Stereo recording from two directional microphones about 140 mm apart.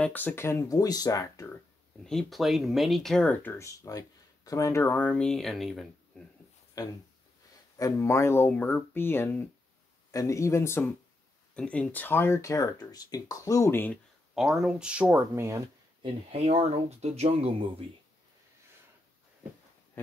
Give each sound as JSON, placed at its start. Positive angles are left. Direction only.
{"t": 0.0, "sound": "speech", "side_deg": 15}
{"t": 2.0, "sound": "speech", "side_deg": 0}
{"t": 3.5, "sound": "speech", "side_deg": 20}
{"t": 6.8, "sound": "speech", "side_deg": 25}
{"t": 11.5, "sound": "speech", "side_deg": 10}
{"t": 14.3, "sound": "speech", "side_deg": -5}
{"t": 16.0, "sound": "speech", "side_deg": -40}